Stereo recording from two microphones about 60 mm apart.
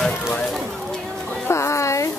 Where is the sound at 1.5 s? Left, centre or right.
Left.